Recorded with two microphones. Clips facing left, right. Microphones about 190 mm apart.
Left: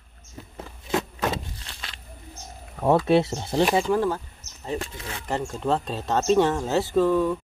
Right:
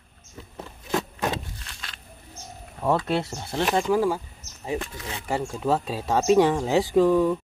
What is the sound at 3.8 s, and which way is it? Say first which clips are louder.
Speech: right 1 dB; 5° right (ahead or behind).